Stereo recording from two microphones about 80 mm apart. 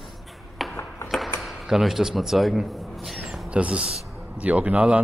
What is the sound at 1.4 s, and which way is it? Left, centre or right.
Speech, centre.